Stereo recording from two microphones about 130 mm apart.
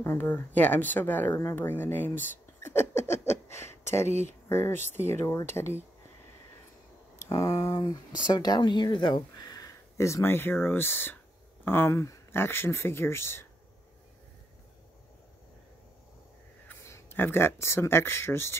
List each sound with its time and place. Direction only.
0.0 s speech: 15° left (ahead or behind)
4.7 s speech: 60° right (ahead or behind)
5.1 s speech: 20° left (ahead or behind)
7.2 s speech: 25° left (ahead or behind)
16.6 s speech: 20° left (ahead or behind)